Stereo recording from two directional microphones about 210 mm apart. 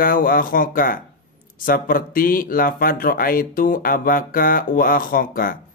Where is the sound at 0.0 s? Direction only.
40° left (ahead or behind).